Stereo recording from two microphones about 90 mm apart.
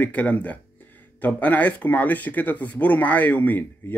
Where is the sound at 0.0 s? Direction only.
15° left (ahead or behind).